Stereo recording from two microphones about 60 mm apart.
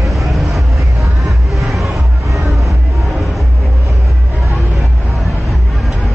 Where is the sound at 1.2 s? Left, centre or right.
Centre.